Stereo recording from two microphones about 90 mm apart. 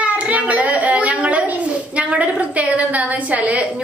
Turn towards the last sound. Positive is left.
turn(degrees=-15)  # may be behind; listen again after turning